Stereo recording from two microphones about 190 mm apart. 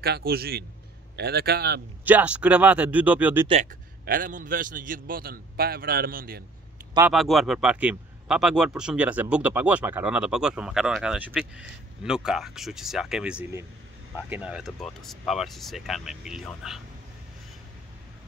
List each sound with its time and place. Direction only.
0.0 s a man's voice: 55° right (ahead or behind)
2.0 s speech: 10° right (ahead or behind)
4.0 s a man's voice: 50° right (ahead or behind)
7.1 s a man's voice: centre (ahead or behind)